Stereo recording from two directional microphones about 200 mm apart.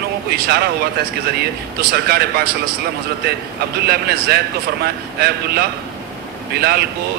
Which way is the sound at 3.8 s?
50° right (ahead or behind).